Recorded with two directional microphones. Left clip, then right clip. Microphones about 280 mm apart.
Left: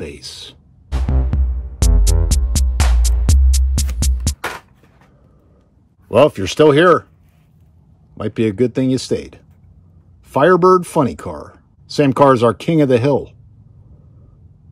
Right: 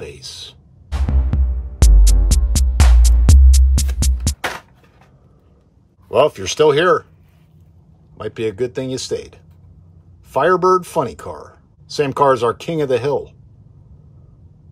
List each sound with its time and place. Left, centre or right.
0.0 s speech: left
0.8 s music: centre
6.0 s speech: left
8.2 s speech: left